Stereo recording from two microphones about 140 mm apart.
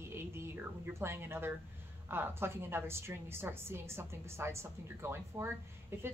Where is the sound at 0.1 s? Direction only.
15° right (ahead or behind).